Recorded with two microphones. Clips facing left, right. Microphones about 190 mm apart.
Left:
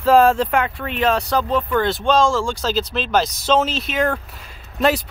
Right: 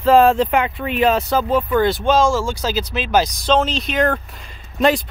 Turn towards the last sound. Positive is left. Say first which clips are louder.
# right 2 dB
turn(degrees=5)  # may be behind; listen again after turning